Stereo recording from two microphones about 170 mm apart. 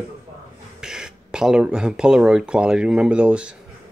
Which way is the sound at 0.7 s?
5° right (ahead or behind).